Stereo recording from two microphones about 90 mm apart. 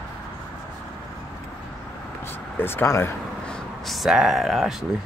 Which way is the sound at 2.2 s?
25° left (ahead or behind).